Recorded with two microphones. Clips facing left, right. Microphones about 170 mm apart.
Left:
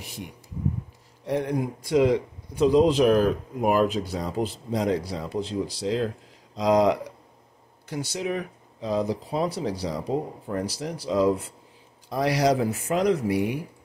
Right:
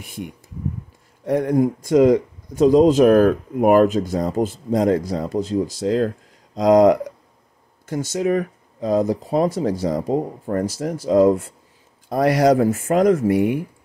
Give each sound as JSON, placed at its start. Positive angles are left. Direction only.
{"t": 0.0, "sound": "speech", "side_deg": -50}